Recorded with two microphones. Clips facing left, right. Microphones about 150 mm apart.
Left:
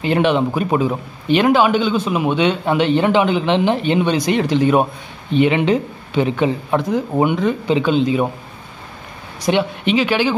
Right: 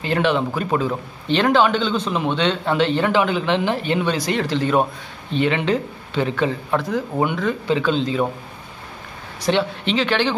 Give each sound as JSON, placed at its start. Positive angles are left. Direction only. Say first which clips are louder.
{"t": 0.0, "sound": "speech", "louder": "left 4 dB", "side_deg": 15}
{"t": 9.4, "sound": "speech", "louder": "left 2 dB", "side_deg": 15}